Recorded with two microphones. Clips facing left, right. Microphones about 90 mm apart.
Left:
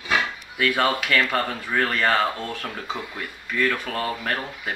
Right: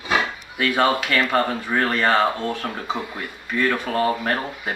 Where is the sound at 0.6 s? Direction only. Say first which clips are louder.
Right 2 dB; 5° right (ahead or behind).